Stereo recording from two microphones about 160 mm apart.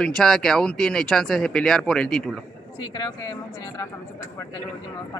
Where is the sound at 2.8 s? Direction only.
25° left (ahead or behind).